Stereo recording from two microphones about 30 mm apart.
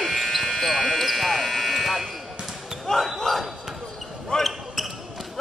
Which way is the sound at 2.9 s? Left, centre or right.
Left.